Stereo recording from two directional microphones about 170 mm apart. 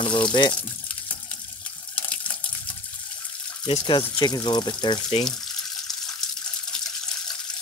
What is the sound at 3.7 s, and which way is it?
Speech, 30° left (ahead or behind).